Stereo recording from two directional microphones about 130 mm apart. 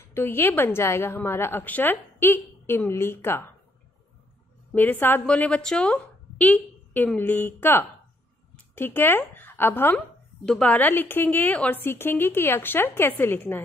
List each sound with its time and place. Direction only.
0.0 s a woman's voice: 20° left (ahead or behind)
4.7 s a woman's voice: 15° left (ahead or behind)